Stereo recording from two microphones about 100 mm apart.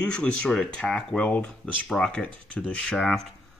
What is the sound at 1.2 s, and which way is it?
Speech, 15° left (ahead or behind).